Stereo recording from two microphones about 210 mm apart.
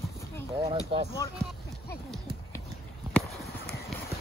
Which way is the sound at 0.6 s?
30° right (ahead or behind).